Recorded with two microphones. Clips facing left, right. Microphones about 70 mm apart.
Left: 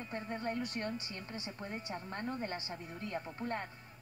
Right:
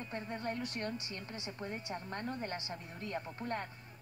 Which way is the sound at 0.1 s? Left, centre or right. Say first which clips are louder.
Left 2 dB; left.